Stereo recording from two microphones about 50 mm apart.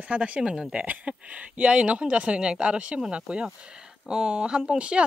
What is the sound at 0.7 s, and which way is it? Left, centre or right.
Speech, right.